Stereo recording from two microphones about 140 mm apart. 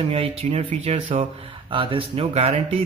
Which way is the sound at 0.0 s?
45° right (ahead or behind).